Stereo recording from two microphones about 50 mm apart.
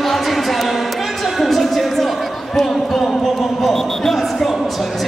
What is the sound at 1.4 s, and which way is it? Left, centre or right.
Music, centre.